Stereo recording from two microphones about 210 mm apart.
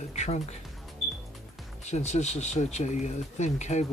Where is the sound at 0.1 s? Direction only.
30° left (ahead or behind).